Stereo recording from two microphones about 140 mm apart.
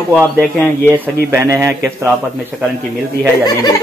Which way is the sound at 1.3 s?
20° right (ahead or behind).